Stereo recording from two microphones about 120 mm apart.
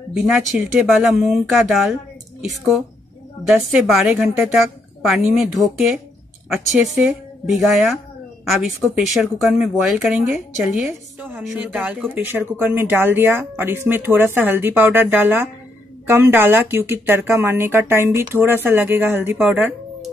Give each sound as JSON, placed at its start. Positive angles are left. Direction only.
{"t": 0.6, "sound": "speech", "side_deg": -5}
{"t": 10.2, "sound": "speech", "side_deg": -15}